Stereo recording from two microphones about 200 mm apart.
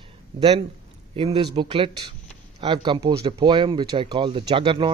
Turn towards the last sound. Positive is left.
turn(degrees=-25)  # may be behind; listen again after turning